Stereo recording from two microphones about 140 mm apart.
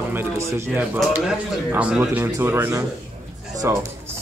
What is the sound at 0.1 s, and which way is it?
A man's voice, 20° right (ahead or behind).